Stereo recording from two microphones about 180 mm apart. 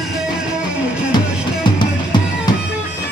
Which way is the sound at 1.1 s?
25° left (ahead or behind).